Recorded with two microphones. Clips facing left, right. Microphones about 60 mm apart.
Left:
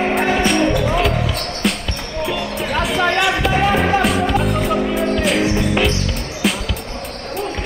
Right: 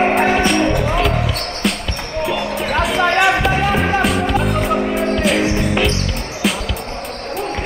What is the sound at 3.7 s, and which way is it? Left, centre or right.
Music, centre.